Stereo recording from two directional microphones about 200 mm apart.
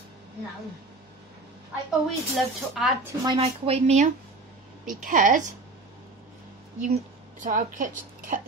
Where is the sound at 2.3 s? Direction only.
Centre (ahead or behind).